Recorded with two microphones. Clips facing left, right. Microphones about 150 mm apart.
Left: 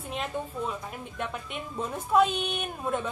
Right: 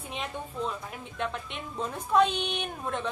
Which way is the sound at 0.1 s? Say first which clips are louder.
Left 4 dB; 5° left (ahead or behind).